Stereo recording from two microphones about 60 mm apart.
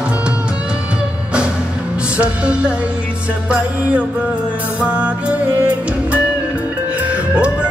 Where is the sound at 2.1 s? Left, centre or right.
Centre.